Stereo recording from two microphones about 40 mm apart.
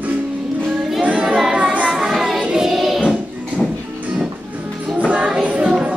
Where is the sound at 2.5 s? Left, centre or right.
Centre.